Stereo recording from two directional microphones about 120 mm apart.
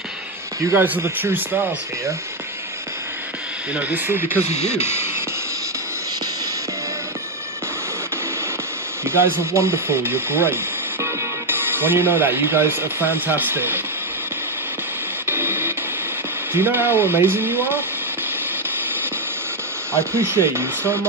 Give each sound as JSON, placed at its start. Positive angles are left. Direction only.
{"t": 0.7, "sound": "speech", "side_deg": -15}
{"t": 3.7, "sound": "speech", "side_deg": -15}
{"t": 9.0, "sound": "speech", "side_deg": -20}
{"t": 15.2, "sound": "a sound", "side_deg": -20}
{"t": 16.5, "sound": "speech", "side_deg": -15}
{"t": 19.9, "sound": "speech", "side_deg": -20}